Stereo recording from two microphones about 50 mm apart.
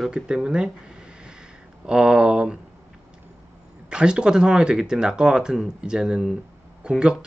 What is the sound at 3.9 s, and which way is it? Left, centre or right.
Speech, centre.